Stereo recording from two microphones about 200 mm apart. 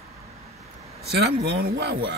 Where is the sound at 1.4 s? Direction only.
55° right (ahead or behind).